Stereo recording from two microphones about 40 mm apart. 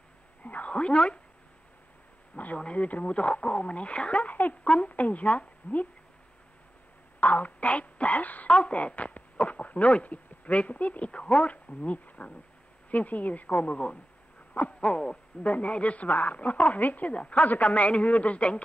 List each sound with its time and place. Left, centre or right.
0.4 s a sound: left
0.7 s owl: left
2.3 s a woman's voice: left
4.6 s owl: left
4.9 s a woman's voice: left
7.2 s a woman's voice: left
8.5 s owl: left
8.7 s a woman's voice: left
14.7 s owl: left
15.4 s a woman's voice: left